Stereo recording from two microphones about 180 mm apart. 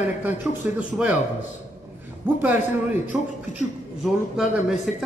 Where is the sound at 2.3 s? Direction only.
10° right (ahead or behind).